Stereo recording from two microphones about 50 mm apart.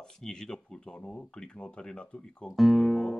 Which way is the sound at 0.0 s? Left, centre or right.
Centre.